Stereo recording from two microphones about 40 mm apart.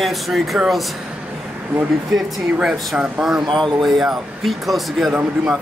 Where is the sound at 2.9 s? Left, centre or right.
Right.